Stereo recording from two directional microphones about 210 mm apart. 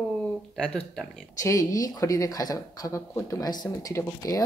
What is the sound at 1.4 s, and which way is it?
Speech, 15° left (ahead or behind).